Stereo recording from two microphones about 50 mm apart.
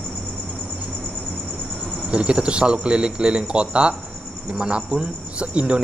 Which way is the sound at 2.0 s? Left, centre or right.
Right.